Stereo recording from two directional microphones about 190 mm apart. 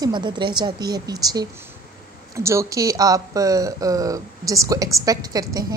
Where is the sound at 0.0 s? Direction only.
25° right (ahead or behind).